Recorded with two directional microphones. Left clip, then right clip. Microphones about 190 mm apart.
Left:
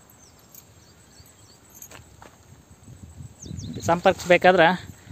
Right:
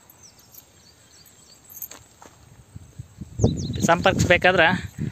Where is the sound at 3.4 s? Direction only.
45° left (ahead or behind).